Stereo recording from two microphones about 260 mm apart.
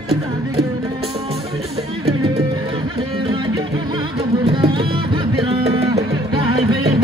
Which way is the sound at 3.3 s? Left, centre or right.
Centre.